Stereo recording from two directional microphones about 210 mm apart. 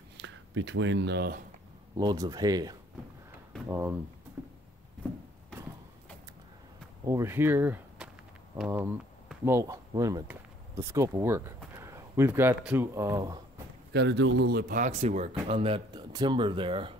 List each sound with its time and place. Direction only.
0.2 s speech: 60° right (ahead or behind)
2.0 s speech: 20° right (ahead or behind)
4.4 s a sound: 10° right (ahead or behind)
7.1 s speech: 10° right (ahead or behind)
13.9 s a man's voice: 60° right (ahead or behind); by 16.9 s 25° right (ahead or behind)